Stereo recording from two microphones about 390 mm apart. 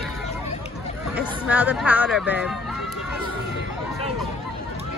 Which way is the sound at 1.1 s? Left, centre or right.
Centre.